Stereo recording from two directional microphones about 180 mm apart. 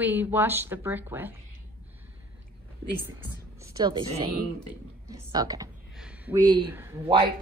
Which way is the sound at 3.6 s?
20° right (ahead or behind).